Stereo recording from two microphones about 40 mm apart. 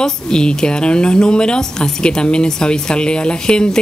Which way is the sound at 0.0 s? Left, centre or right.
Left.